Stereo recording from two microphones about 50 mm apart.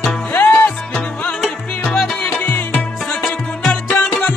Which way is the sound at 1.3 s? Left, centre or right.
Left.